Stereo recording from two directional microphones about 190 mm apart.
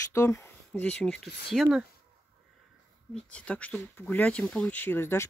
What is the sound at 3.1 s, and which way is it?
Speech, 5° left (ahead or behind).